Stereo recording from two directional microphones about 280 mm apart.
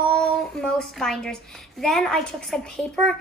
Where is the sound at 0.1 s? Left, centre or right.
Centre.